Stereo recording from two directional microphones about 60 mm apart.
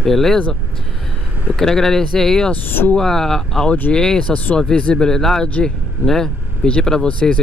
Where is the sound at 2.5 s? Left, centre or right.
Left.